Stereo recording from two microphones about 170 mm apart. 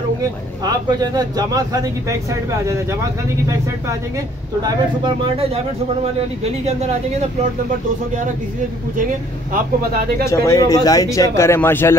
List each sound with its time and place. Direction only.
0.2 s speech: 20° right (ahead or behind)
4.6 s speech: 25° right (ahead or behind)
10.2 s speech: 20° left (ahead or behind)